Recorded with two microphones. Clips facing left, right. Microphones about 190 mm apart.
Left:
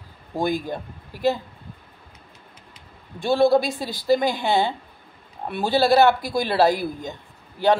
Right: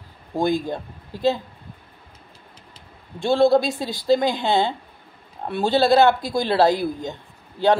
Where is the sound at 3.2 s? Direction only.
20° right (ahead or behind).